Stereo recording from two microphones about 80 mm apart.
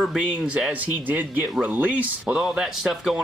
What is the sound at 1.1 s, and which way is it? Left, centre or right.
Speech, right.